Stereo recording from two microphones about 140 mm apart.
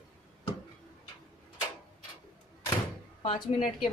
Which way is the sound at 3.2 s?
40° left (ahead or behind).